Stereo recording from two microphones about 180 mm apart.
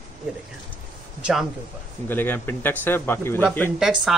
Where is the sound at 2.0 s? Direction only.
10° left (ahead or behind).